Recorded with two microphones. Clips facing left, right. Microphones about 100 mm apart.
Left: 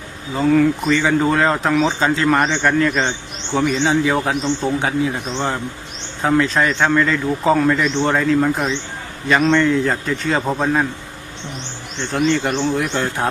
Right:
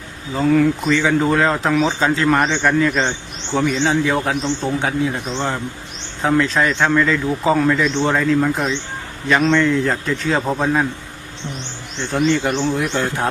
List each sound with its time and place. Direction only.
0.3 s speech: centre (ahead or behind)
6.2 s speech: centre (ahead or behind)
12.0 s speech: centre (ahead or behind)